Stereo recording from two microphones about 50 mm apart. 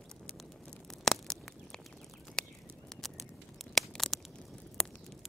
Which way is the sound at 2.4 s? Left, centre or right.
Centre.